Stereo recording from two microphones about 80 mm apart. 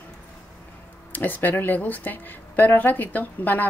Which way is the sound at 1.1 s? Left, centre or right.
Left.